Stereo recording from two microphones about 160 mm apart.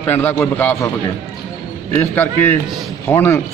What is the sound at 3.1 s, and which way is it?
Speech, 15° left (ahead or behind).